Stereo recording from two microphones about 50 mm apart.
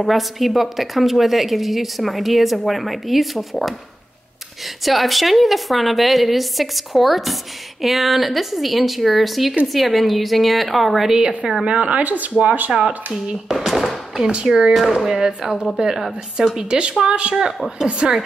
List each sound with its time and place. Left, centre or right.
0.0 s a woman's voice: centre
4.8 s a woman's voice: centre
11.6 s speech: right
12.7 s speech: centre
14.2 s a woman's voice: centre
14.8 s a woman's voice: centre
15.1 s a woman's voice: centre